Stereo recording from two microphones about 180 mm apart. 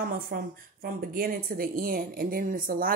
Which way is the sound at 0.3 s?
55° right (ahead or behind).